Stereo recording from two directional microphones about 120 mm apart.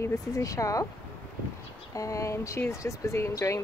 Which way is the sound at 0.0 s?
25° left (ahead or behind).